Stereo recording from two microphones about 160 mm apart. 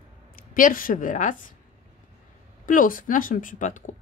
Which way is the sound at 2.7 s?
55° left (ahead or behind).